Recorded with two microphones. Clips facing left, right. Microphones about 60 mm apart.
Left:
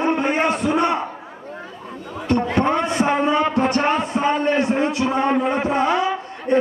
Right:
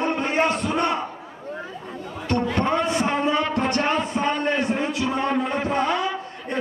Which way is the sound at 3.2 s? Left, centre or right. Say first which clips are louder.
Left 4 dB; centre.